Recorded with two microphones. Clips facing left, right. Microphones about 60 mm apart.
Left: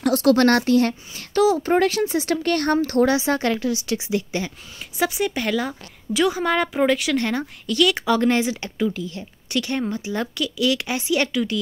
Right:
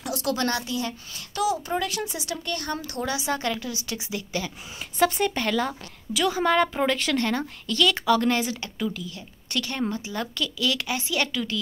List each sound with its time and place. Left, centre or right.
0.0 s speech: left
1.7 s speech: left
2.2 s speech: left
4.9 s speech: centre
6.4 s speech: centre